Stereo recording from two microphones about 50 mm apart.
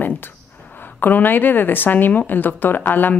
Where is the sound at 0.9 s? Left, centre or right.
Left.